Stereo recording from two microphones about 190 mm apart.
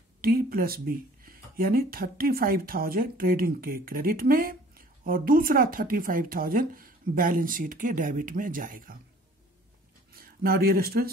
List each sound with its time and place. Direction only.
0.2 s speech: 50° right (ahead or behind)
10.1 s speech: 50° right (ahead or behind)